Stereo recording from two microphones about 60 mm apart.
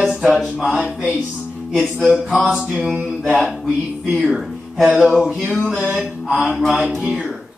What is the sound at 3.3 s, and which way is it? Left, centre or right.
Speech, centre.